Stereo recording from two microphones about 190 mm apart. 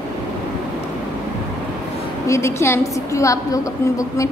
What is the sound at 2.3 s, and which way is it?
A woman's voice, 15° left (ahead or behind).